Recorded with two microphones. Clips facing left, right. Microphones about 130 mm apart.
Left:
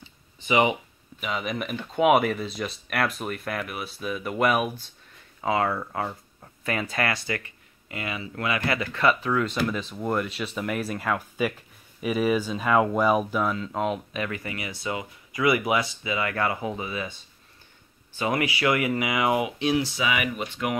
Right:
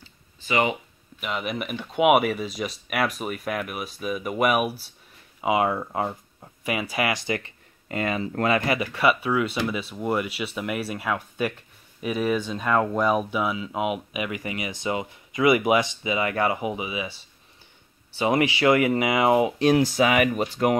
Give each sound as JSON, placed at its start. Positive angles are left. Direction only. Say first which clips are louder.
{"t": 0.5, "sound": "speech", "louder": "left 2 dB", "side_deg": 15}
{"t": 1.2, "sound": "speech", "louder": "even", "side_deg": -5}
{"t": 7.9, "sound": "speech", "louder": "right 7 dB", "side_deg": -40}
{"t": 8.6, "sound": "speech", "louder": "right 1 dB", "side_deg": -15}
{"t": 18.2, "sound": "speech", "louder": "right 4 dB", "side_deg": -25}
{"t": 19.6, "sound": "speech", "louder": "right 6 dB", "side_deg": -45}